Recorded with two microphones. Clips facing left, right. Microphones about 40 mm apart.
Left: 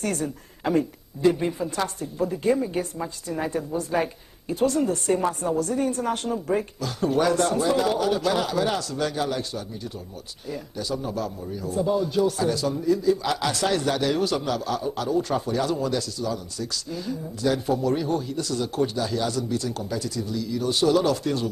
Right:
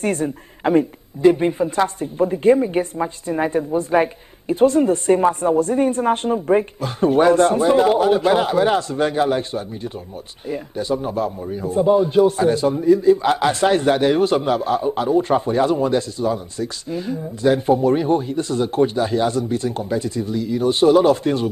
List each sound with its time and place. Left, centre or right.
0.0 s a woman's voice: right